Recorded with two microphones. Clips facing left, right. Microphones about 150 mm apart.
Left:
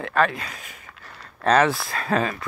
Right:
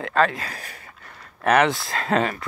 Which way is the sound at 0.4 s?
35° right (ahead or behind).